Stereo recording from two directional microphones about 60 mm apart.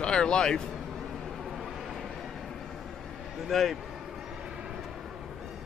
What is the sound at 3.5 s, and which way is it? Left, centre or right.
Speech, centre.